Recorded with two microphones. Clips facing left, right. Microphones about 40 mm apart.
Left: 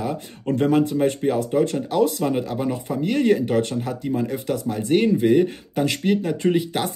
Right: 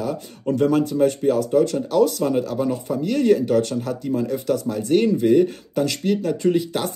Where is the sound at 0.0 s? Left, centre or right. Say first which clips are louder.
Right 1 dB; left.